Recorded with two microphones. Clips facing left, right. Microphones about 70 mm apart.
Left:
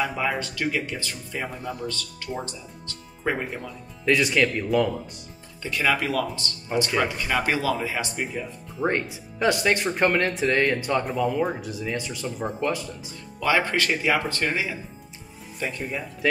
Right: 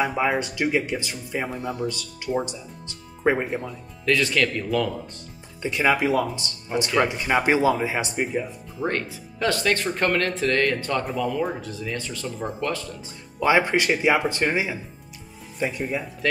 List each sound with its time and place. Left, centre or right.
0.0 s speech: centre
4.0 s speech: centre
5.6 s speech: right
8.8 s speech: centre
13.4 s speech: centre